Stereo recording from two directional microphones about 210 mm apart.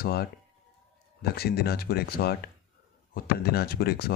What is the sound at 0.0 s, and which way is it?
Speech, 45° left (ahead or behind).